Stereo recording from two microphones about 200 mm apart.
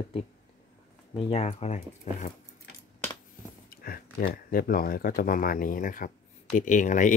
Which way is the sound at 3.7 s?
45° left (ahead or behind).